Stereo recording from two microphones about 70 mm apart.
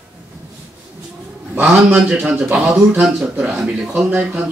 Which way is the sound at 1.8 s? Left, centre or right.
Centre.